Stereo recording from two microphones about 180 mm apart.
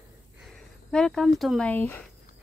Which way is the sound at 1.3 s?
Centre (ahead or behind).